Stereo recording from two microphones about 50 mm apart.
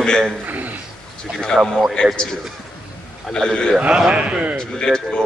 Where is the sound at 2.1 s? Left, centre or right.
Centre.